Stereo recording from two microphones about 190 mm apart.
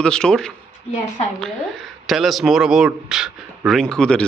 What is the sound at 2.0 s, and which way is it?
Speech, centre (ahead or behind).